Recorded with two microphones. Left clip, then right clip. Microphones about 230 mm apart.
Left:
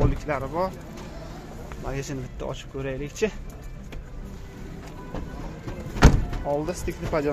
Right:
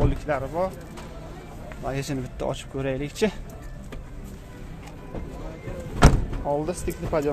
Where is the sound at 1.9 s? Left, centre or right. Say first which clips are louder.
Right 3 dB; centre.